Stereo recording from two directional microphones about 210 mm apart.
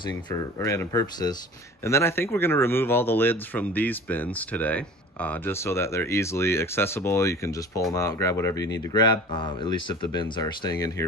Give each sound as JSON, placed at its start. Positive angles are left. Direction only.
{"t": 0.3, "sound": "speech", "side_deg": 15}